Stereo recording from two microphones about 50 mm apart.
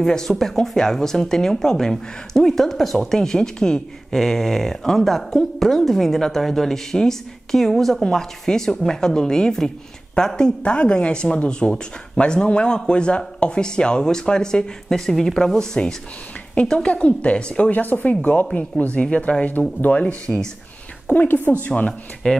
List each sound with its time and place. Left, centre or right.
0.0 s speech: centre
17.7 s speech: left
18.1 s speech: left
22.2 s speech: centre